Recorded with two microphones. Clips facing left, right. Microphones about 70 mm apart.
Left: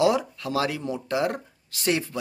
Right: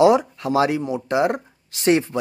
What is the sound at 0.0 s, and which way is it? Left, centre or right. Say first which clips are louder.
Speech: right 7 dB; right.